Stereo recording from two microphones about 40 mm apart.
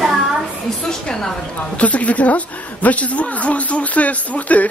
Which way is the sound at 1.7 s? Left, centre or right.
Left.